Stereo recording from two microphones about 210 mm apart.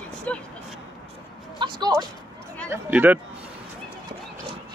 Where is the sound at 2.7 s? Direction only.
10° right (ahead or behind).